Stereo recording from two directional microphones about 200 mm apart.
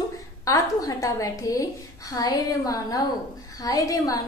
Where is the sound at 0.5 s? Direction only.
15° left (ahead or behind).